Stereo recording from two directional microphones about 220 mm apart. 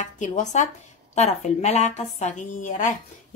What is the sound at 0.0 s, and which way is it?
A woman's voice, 35° left (ahead or behind).